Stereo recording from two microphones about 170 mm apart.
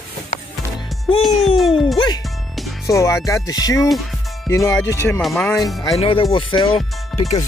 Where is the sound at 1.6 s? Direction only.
Centre (ahead or behind).